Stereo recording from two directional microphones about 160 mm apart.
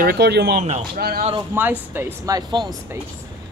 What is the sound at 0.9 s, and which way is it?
Speech, 70° right (ahead or behind).